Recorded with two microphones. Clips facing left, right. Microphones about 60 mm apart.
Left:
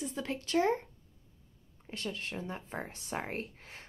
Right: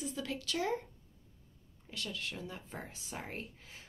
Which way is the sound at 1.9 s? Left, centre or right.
Left.